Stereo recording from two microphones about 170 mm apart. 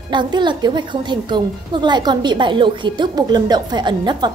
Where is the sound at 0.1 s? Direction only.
25° right (ahead or behind).